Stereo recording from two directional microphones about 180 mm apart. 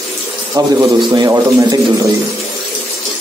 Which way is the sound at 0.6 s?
20° right (ahead or behind).